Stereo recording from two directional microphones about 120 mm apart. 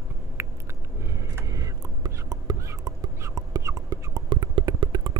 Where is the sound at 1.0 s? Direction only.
25° right (ahead or behind).